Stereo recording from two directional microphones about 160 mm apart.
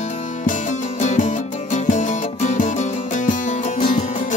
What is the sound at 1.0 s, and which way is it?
Music, 50° left (ahead or behind).